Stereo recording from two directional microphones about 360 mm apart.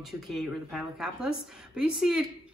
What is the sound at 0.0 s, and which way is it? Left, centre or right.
Speech, centre.